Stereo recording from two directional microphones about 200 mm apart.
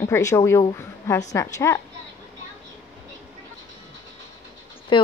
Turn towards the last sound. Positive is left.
turn(degrees=25)  # may be behind; listen again after turning